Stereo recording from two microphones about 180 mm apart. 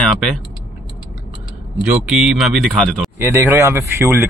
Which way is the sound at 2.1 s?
Centre (ahead or behind).